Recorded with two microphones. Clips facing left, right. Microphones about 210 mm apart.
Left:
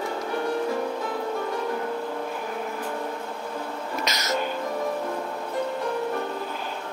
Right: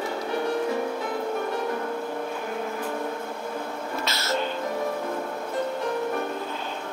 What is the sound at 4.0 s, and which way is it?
Music, 15° left (ahead or behind).